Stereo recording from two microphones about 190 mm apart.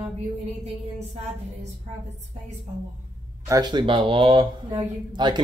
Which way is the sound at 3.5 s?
20° right (ahead or behind).